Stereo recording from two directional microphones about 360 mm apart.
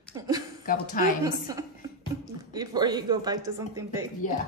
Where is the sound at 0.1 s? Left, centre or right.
Centre.